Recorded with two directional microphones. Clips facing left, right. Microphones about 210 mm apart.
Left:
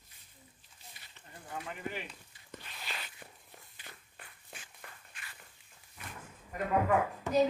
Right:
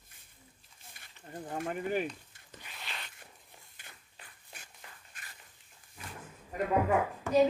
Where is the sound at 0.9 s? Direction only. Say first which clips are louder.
Right 8 dB; 50° right (ahead or behind).